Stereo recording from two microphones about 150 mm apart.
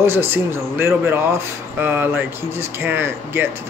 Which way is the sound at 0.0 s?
15° right (ahead or behind).